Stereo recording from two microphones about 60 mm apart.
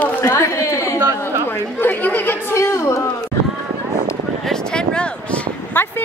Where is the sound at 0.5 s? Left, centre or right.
Left.